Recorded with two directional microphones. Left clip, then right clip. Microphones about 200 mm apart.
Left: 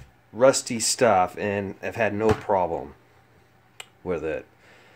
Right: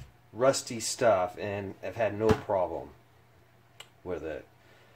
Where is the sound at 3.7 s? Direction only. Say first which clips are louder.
Left 8 dB; 55° left (ahead or behind).